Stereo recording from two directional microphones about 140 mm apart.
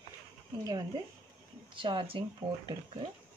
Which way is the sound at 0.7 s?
30° right (ahead or behind).